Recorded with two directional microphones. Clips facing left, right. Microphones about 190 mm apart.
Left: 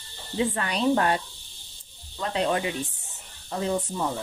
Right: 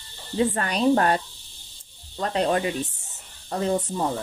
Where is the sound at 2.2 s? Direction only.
45° right (ahead or behind).